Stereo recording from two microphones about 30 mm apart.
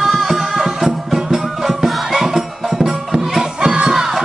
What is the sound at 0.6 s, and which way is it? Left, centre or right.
Music, centre.